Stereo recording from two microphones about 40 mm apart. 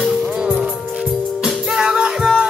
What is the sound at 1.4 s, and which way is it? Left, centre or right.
Music, centre.